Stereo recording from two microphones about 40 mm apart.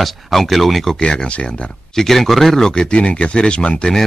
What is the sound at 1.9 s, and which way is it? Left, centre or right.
Speech, centre.